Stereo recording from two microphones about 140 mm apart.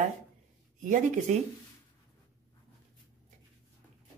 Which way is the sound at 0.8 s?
65° right (ahead or behind).